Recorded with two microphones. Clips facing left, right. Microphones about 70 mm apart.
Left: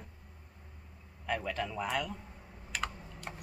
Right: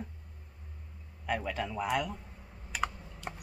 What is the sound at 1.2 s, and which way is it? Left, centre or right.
Speech, centre.